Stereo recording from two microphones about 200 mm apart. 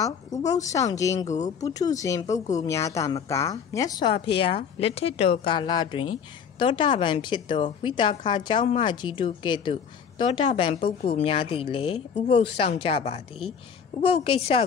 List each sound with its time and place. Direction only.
0.0 s speech: 15° left (ahead or behind)
1.2 s speech: 35° left (ahead or behind)
1.6 s a woman's voice: 15° left (ahead or behind)